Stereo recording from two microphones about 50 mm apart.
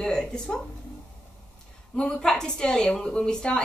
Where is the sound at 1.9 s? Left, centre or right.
Centre.